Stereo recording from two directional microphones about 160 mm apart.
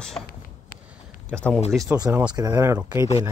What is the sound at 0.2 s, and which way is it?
Speech, 20° left (ahead or behind).